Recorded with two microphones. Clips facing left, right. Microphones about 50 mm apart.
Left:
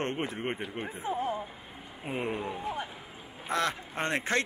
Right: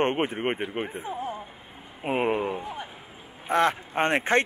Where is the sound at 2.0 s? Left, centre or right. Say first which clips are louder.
Right 8 dB; right.